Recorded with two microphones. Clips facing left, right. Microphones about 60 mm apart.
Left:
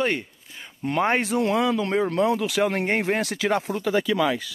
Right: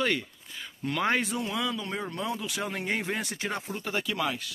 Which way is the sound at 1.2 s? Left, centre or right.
Left.